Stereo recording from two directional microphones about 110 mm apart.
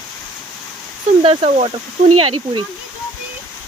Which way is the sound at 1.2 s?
65° right (ahead or behind).